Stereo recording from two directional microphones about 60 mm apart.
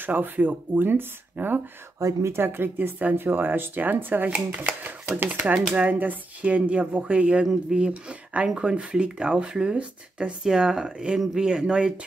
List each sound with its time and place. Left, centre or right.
0.0 s speech: right
2.0 s speech: right
2.3 s speech: right; by 11.9 s centre